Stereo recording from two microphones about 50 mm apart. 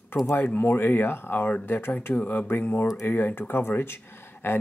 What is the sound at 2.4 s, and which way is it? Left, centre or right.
Speech, left.